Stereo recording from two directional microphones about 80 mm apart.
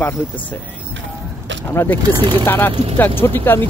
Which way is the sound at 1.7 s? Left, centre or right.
Left.